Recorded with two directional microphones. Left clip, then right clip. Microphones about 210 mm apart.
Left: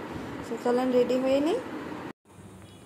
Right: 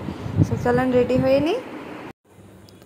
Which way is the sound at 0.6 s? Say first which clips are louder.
Right 5 dB; 15° right (ahead or behind).